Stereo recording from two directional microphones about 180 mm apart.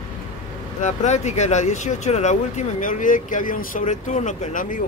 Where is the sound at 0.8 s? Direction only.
40° left (ahead or behind).